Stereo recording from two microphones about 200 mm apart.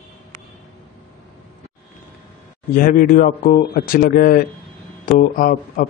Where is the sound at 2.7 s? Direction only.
45° left (ahead or behind).